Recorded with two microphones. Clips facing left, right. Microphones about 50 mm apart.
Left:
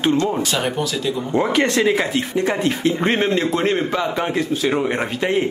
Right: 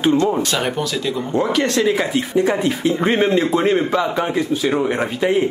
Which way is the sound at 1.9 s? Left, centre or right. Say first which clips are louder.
Right 2 dB; centre.